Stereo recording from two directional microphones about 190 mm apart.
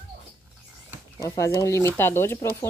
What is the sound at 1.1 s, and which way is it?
Speech, 15° left (ahead or behind).